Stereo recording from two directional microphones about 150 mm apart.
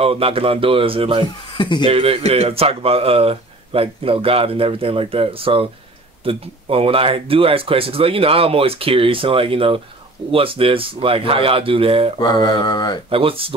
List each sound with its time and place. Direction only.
0.0 s speech: 40° right (ahead or behind)
1.6 s speech: 30° left (ahead or behind)
1.9 s speech: 40° right (ahead or behind)
12.2 s speech: 25° left (ahead or behind)
13.1 s speech: 40° right (ahead or behind)